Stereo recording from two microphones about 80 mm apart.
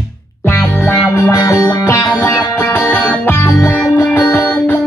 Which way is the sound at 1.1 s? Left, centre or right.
Left.